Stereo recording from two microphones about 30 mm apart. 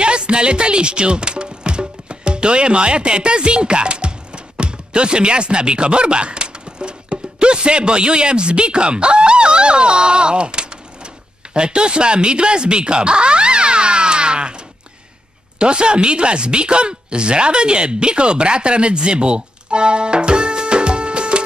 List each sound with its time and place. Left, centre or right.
0.0 s speech: right
11.5 s a sound: right
15.6 s speech: right